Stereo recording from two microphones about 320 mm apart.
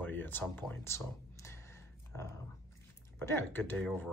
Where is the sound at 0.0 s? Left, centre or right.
Centre.